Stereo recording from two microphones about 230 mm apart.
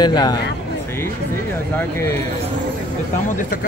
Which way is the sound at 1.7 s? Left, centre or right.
Centre.